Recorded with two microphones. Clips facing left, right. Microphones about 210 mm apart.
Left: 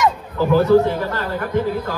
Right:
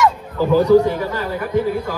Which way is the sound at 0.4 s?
15° right (ahead or behind).